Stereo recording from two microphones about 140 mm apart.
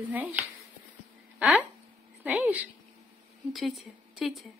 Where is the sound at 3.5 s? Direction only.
Centre (ahead or behind).